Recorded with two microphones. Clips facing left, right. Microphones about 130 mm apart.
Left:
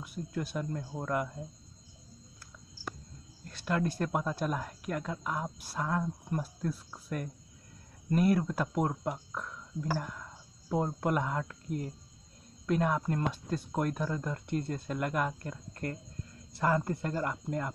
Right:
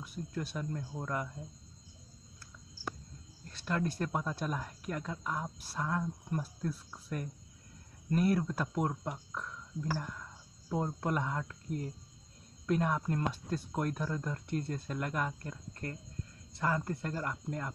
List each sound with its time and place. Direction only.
0.0 s speech: 5° left (ahead or behind)
3.5 s speech: centre (ahead or behind)
16.5 s speech: 5° left (ahead or behind)